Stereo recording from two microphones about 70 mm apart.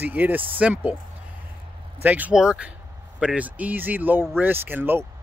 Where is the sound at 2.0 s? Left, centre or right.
Right.